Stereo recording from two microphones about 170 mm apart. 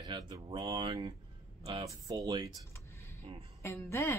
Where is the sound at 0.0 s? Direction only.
25° right (ahead or behind).